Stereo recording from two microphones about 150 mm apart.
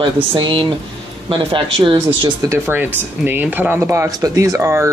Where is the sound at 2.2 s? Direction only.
20° right (ahead or behind).